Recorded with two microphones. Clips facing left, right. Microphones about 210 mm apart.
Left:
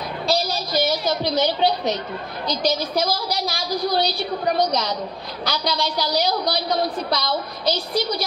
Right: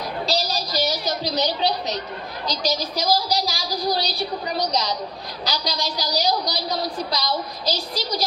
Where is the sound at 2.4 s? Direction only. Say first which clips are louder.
Left 3 dB; 55° left (ahead or behind).